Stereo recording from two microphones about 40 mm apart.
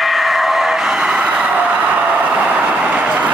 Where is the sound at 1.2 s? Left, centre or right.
Right.